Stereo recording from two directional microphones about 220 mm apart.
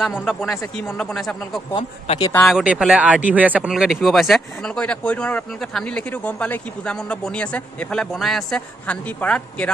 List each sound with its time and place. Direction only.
0.0 s speech: centre (ahead or behind)
1.7 s speech: 20° left (ahead or behind)
2.4 s speech: 5° right (ahead or behind)